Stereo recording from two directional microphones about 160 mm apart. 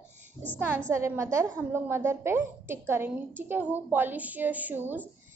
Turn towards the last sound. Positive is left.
turn(degrees=-10)  # may be behind; listen again after turning